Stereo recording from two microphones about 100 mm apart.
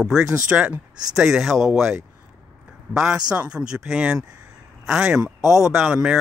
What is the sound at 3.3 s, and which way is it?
Speech, 10° right (ahead or behind).